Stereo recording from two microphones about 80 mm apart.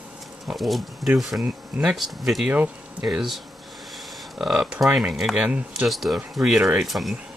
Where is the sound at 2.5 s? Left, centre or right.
Centre.